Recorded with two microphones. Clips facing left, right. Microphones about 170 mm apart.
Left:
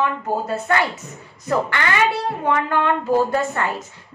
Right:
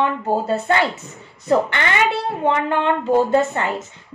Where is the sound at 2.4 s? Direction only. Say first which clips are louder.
Right 1 dB; 25° right (ahead or behind).